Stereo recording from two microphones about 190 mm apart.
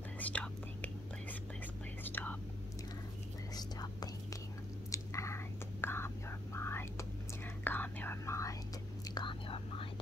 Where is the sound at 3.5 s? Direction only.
20° left (ahead or behind).